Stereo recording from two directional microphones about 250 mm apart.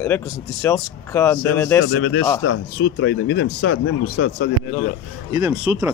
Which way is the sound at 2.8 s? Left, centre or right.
Left.